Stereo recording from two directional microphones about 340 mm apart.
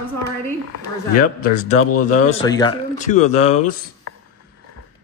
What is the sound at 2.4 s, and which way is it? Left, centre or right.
Speech, centre.